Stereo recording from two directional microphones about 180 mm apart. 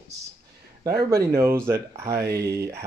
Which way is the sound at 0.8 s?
60° right (ahead or behind).